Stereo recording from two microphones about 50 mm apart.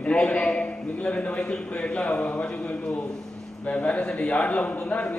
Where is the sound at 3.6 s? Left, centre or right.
Left.